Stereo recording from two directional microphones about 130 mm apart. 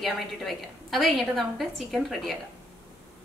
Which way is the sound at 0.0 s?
Centre (ahead or behind).